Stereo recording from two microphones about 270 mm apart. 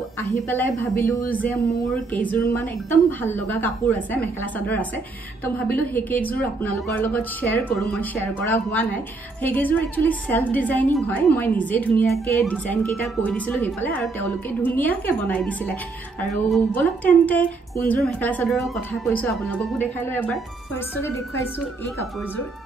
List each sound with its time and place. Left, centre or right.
0.3 s a woman's voice: centre
5.9 s speech: centre